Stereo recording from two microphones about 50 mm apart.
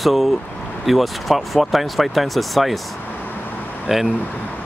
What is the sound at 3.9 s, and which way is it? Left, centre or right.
Speech, centre.